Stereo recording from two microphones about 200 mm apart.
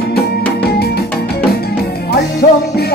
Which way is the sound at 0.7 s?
50° left (ahead or behind).